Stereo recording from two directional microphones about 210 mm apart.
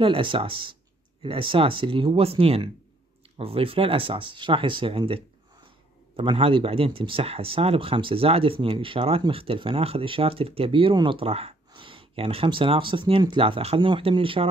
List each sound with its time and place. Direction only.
0.0 s speech: 25° right (ahead or behind)